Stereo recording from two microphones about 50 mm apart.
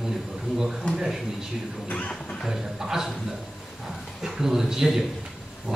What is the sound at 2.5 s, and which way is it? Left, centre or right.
Speech, centre.